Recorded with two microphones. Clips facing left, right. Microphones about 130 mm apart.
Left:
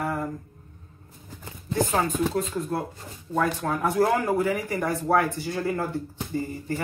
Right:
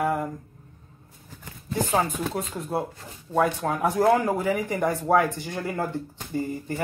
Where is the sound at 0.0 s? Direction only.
10° right (ahead or behind).